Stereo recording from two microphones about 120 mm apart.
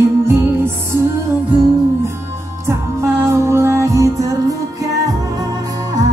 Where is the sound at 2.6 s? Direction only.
20° right (ahead or behind).